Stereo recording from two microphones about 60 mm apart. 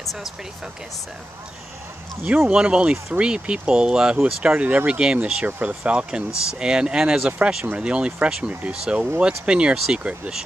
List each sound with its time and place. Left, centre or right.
2.2 s speech: right
2.5 s speech: centre
4.6 s speech: right